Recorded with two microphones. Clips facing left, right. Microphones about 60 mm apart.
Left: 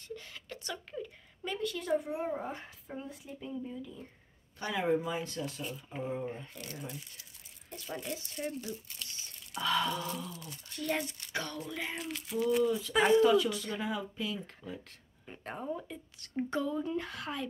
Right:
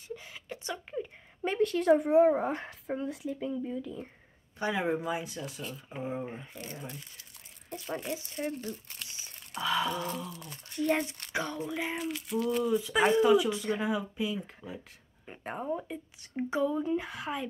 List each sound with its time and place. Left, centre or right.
0.1 s a sound: centre
1.4 s speech: right
4.6 s speech: centre
5.6 s speech: centre
6.0 s speech: centre; by 9.1 s right
9.6 s speech: centre
10.7 s speech: right; by 12.6 s centre
12.6 s speech: centre